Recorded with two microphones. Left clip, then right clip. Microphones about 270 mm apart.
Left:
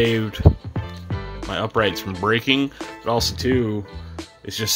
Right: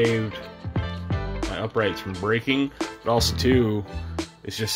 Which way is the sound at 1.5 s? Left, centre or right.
Centre.